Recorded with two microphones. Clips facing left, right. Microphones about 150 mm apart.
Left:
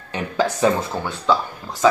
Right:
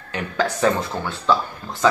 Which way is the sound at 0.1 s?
20° left (ahead or behind).